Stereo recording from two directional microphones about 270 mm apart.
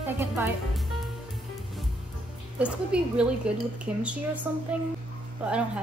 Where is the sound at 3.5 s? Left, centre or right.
Centre.